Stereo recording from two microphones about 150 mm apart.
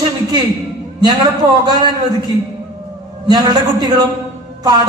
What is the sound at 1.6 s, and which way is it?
Speech, 30° right (ahead or behind).